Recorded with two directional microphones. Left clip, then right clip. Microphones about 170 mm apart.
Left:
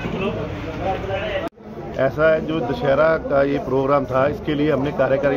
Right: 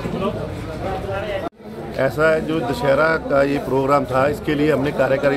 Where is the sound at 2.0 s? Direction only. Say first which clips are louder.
Even; 20° right (ahead or behind).